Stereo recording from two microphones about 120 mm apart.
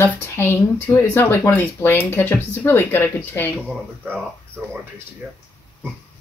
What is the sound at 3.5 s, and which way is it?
Speech, 10° right (ahead or behind).